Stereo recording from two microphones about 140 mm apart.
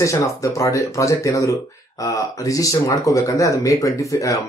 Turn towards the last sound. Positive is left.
turn(degrees=25)  # may be behind; listen again after turning